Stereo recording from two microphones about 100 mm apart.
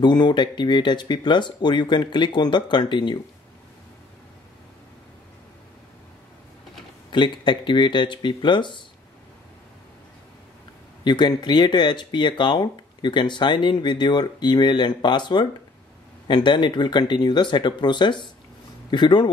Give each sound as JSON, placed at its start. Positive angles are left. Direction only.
{"t": 0.0, "sound": "speech", "side_deg": 50}
{"t": 7.1, "sound": "speech", "side_deg": 50}
{"t": 11.1, "sound": "speech", "side_deg": 50}